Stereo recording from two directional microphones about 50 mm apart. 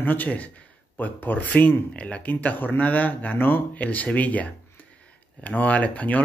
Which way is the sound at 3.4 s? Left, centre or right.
Left.